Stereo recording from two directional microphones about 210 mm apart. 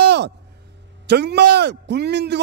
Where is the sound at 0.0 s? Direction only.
55° right (ahead or behind).